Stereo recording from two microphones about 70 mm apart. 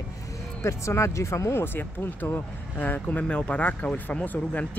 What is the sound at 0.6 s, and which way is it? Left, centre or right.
Speech, left.